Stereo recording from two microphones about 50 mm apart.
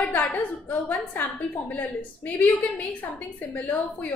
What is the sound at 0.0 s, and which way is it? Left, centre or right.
A woman's voice, left.